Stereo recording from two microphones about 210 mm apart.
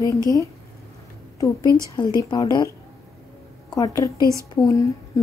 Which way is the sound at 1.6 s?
15° right (ahead or behind).